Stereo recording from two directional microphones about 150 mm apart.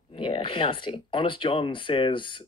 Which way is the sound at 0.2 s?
35° left (ahead or behind).